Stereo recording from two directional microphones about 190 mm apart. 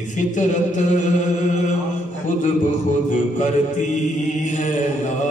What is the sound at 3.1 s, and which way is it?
Chant, 40° left (ahead or behind).